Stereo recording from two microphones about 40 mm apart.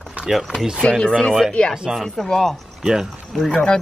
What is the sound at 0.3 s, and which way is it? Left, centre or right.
Speech, centre.